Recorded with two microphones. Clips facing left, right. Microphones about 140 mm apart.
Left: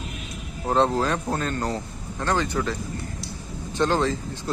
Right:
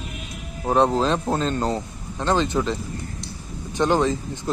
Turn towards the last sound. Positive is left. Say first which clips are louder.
# right 3 dB
turn(degrees=-15)  # may be behind; listen again after turning